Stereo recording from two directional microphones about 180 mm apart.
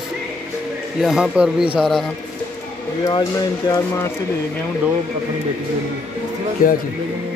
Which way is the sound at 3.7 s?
25° left (ahead or behind).